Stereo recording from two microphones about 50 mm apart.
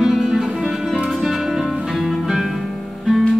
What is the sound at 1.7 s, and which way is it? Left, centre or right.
Music, centre.